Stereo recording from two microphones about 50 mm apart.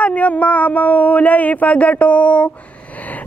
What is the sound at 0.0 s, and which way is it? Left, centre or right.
Speech, left.